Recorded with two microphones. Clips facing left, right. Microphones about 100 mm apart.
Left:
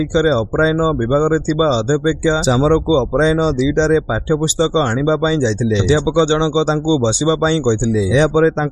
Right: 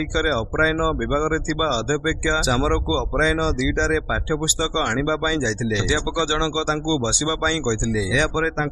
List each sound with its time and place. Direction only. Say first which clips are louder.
0.1 s speech: left 9 dB; 25° left (ahead or behind)